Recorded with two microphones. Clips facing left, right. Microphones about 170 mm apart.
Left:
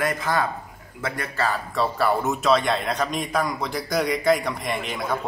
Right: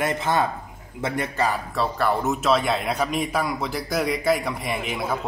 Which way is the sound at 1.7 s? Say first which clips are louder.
Left 1 dB; centre (ahead or behind).